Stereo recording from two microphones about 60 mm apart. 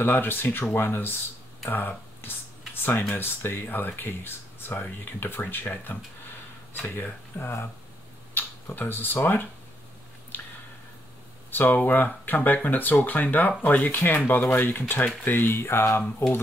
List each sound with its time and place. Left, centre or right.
0.0 s speech: left
10.3 s a sound: left
11.5 s speech: left